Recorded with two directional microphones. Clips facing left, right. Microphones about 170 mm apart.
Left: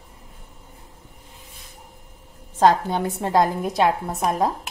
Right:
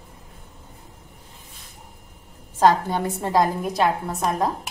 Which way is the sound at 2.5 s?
Centre (ahead or behind).